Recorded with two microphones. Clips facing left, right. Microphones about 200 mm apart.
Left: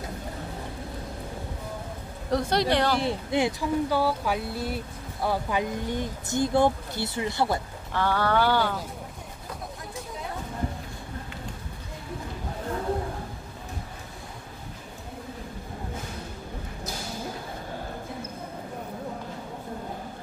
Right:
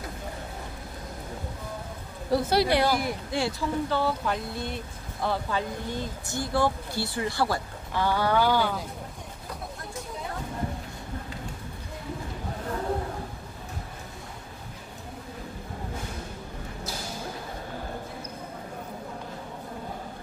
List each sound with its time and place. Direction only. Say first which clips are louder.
2.3 s speech: right 1 dB; 5° right (ahead or behind)
3.0 s speech: left 4 dB; 25° left (ahead or behind)
7.9 s speech: even; 10° right (ahead or behind)